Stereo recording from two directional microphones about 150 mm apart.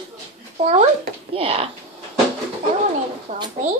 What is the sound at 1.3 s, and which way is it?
Speech, 40° right (ahead or behind).